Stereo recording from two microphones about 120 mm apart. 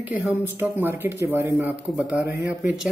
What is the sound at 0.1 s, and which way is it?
Speech, 15° right (ahead or behind).